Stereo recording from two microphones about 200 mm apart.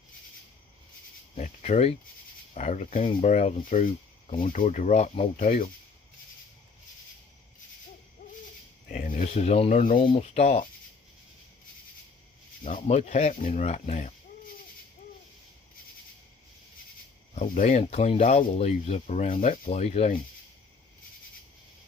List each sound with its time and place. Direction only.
1.3 s speech: 35° left (ahead or behind)
8.9 s speech: 40° left (ahead or behind)
12.6 s speech: 35° left (ahead or behind)
17.4 s speech: 35° left (ahead or behind)